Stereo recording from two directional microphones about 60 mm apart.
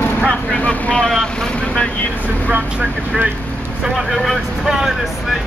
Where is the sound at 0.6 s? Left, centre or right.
Left.